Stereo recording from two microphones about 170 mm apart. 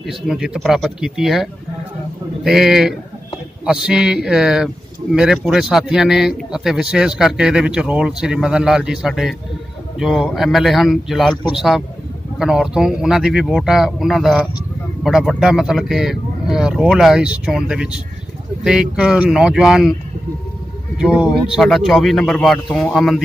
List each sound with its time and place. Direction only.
0.0 s a man's voice: centre (ahead or behind)
21.0 s a man's voice: 5° right (ahead or behind)